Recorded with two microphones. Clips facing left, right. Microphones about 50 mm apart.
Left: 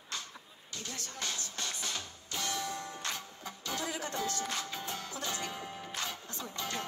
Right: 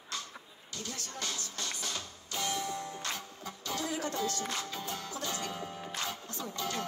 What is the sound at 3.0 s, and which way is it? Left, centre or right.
Music, left.